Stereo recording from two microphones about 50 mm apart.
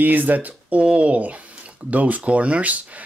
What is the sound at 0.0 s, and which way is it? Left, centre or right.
Speech, right.